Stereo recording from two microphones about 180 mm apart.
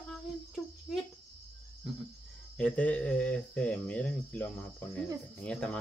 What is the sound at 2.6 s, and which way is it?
Speech, 5° left (ahead or behind).